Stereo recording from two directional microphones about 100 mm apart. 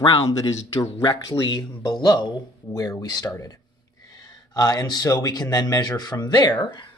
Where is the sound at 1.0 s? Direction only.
45° left (ahead or behind).